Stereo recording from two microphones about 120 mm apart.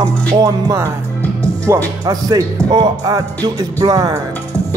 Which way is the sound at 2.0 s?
35° right (ahead or behind).